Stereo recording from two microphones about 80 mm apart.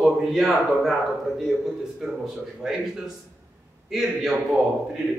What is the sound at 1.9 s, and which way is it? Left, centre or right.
Speech, centre.